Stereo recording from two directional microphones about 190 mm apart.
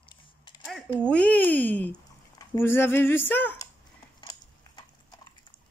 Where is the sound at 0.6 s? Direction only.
5° left (ahead or behind).